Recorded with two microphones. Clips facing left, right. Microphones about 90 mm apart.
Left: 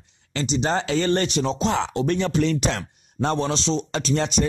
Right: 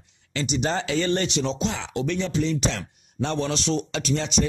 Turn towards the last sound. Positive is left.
turn(degrees=45)  # may be behind; listen again after turning